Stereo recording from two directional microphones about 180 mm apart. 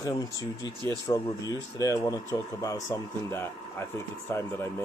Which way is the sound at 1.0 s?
20° left (ahead or behind).